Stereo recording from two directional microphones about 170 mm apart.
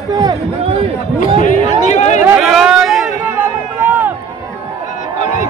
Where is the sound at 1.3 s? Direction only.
50° left (ahead or behind).